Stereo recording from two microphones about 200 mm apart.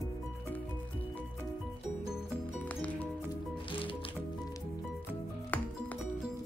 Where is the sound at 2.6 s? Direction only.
10° left (ahead or behind).